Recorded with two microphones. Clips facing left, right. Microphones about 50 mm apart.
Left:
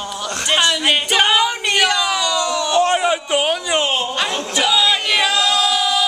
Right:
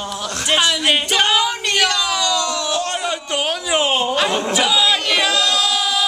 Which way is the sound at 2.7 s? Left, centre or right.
Centre.